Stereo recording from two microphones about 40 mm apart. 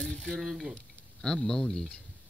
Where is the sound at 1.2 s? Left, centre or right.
Centre.